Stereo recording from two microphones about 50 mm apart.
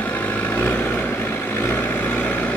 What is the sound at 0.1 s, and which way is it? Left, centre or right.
Vehicle, left.